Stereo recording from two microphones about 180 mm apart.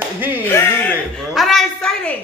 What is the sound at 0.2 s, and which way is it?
Speech, 10° right (ahead or behind).